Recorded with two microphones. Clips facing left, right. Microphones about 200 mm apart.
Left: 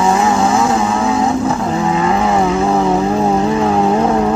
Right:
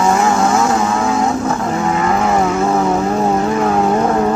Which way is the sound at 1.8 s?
15° left (ahead or behind).